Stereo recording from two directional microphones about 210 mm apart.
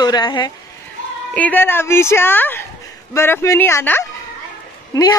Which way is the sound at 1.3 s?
10° left (ahead or behind).